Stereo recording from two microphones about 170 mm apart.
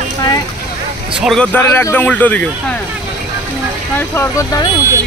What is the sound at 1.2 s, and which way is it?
Speech, 5° left (ahead or behind).